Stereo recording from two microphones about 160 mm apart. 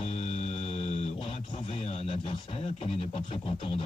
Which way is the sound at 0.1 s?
40° left (ahead or behind).